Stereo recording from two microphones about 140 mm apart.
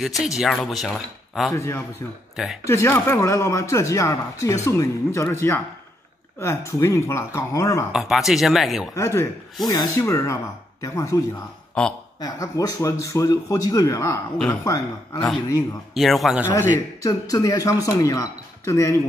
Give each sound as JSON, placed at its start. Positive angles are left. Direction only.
{"t": 0.0, "sound": "speech", "side_deg": 0}
{"t": 1.5, "sound": "speech", "side_deg": 20}
{"t": 2.3, "sound": "speech", "side_deg": 0}
{"t": 2.6, "sound": "speech", "side_deg": 20}
{"t": 7.9, "sound": "speech", "side_deg": 0}
{"t": 8.9, "sound": "speech", "side_deg": 20}
{"t": 15.9, "sound": "speech", "side_deg": 0}
{"t": 17.0, "sound": "speech", "side_deg": 25}